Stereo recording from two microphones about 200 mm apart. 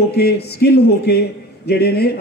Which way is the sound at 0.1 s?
55° left (ahead or behind).